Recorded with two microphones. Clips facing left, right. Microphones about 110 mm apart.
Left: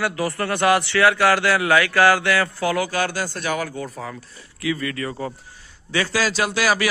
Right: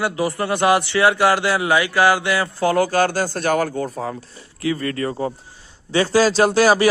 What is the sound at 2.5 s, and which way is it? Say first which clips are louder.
A man's voice: right 5 dB; 35° right (ahead or behind).